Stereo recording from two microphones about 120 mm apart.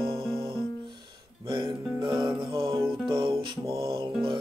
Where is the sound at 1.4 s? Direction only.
40° right (ahead or behind).